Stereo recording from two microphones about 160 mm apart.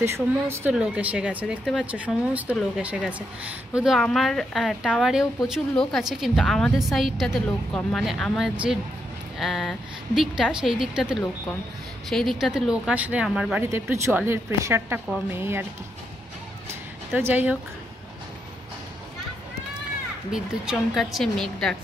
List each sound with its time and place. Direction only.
0.0 s a woman's voice: 15° right (ahead or behind)
13.7 s speech: 15° right (ahead or behind)
17.1 s speech: 10° right (ahead or behind)
20.2 s a woman's voice: 5° right (ahead or behind)